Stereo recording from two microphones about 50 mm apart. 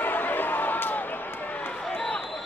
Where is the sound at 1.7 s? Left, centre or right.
Left.